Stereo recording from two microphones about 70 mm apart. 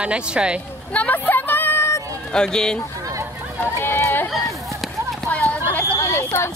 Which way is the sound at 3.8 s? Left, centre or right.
Left.